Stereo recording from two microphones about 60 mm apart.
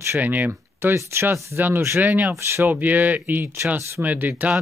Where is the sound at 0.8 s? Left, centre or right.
Right.